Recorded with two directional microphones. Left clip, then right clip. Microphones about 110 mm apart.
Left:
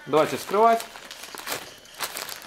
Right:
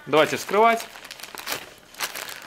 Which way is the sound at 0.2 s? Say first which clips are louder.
Right 2 dB; 45° right (ahead or behind).